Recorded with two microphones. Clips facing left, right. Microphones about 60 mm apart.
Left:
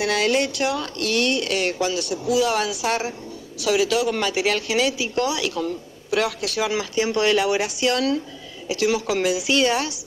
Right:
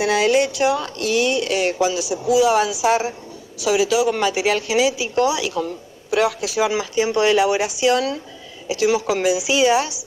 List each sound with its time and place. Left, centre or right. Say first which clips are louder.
0.0 s speech: right 4 dB; centre